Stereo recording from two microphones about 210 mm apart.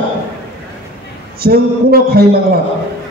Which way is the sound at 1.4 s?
45° right (ahead or behind).